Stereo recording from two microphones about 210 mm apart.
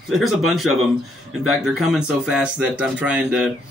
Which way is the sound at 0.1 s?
Centre (ahead or behind).